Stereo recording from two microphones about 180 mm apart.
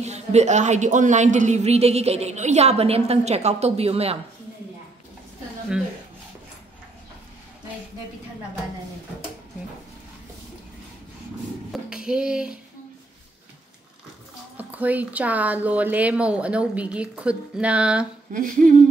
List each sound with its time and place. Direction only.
0.0 s a woman's voice: 40° right (ahead or behind)
11.7 s a sound: 5° right (ahead or behind)
14.6 s a woman's voice: 10° right (ahead or behind)
18.3 s humming: 50° right (ahead or behind)